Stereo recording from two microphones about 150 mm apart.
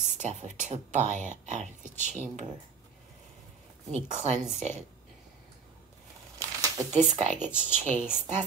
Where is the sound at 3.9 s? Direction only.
50° right (ahead or behind).